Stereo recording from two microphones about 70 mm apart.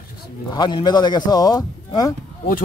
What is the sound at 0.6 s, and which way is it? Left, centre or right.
A man's voice, left.